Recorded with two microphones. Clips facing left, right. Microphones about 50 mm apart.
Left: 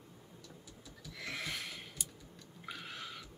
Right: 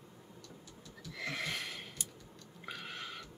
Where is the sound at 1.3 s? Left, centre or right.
Right.